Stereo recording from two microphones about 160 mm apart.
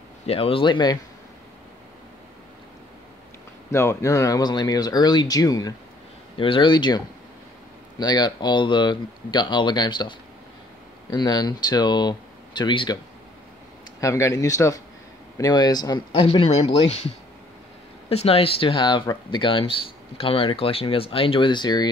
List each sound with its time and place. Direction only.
0.3 s speech: 35° left (ahead or behind)
3.7 s speech: 15° left (ahead or behind)
8.0 s speech: 25° left (ahead or behind)
14.0 s speech: 20° left (ahead or behind)
16.3 s speech: 40° left (ahead or behind)
18.1 s speech: 40° left (ahead or behind)